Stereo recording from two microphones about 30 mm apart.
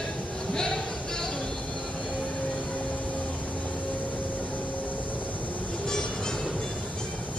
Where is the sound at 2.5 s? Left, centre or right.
Left.